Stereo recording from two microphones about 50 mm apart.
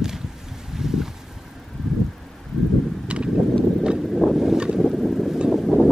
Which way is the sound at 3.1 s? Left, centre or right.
Right.